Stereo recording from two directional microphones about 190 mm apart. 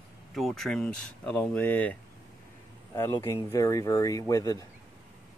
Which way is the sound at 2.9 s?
15° left (ahead or behind).